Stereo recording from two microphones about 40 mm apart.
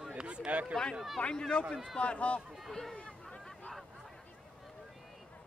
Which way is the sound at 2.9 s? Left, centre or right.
Left.